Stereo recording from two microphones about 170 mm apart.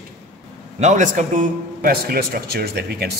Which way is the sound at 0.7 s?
45° right (ahead or behind).